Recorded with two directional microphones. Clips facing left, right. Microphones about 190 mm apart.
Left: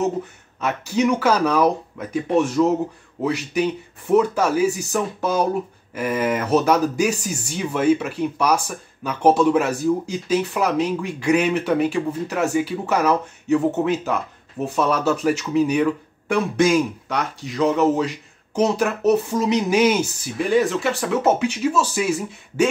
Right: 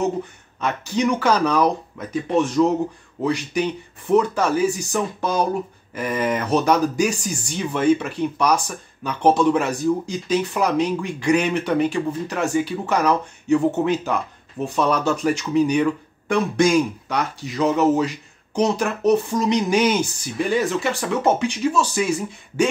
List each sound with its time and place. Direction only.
0.0 s speech: 5° left (ahead or behind)